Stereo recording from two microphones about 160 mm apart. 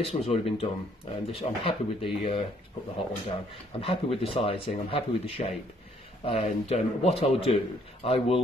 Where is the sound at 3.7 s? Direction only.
35° left (ahead or behind).